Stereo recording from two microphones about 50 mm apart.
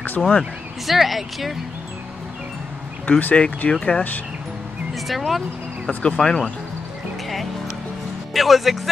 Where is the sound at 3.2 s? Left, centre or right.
Left.